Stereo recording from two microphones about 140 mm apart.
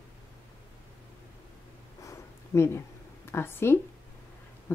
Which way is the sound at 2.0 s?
20° left (ahead or behind).